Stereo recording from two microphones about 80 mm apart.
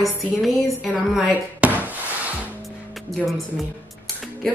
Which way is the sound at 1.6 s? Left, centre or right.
Centre.